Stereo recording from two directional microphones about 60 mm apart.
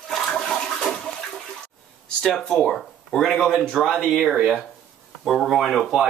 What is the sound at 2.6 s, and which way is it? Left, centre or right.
Speech, centre.